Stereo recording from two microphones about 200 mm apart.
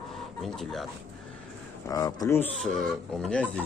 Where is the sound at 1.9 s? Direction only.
15° left (ahead or behind).